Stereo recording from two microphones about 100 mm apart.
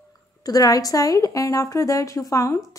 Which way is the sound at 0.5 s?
40° left (ahead or behind).